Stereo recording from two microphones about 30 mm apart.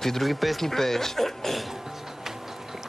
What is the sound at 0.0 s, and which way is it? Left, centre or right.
Speech, centre.